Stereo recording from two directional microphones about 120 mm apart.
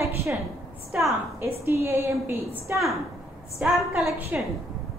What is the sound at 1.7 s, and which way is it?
A woman's voice, 25° right (ahead or behind).